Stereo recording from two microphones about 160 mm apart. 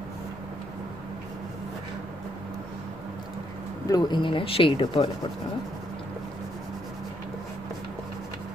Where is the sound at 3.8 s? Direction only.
25° left (ahead or behind).